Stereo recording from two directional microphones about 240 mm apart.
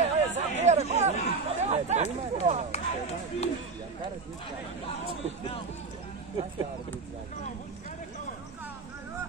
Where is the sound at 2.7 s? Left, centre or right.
Left.